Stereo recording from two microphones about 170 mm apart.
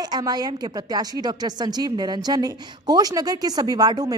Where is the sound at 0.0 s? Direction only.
25° right (ahead or behind).